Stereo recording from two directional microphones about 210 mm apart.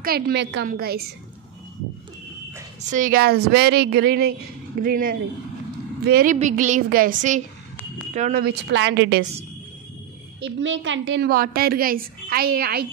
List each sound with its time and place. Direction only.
0.0 s a woman's voice: 50° right (ahead or behind)
2.9 s a woman's voice: 40° right (ahead or behind)
10.4 s a woman's voice: 60° right (ahead or behind)